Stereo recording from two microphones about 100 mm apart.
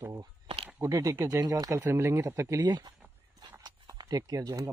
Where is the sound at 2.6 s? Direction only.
45° right (ahead or behind).